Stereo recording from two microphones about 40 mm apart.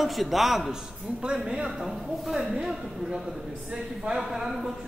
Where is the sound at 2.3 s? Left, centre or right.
Centre.